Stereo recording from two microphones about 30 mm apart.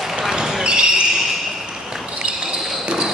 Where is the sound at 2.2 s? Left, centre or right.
Right.